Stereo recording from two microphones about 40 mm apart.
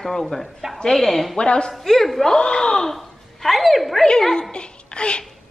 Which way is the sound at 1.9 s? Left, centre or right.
Centre.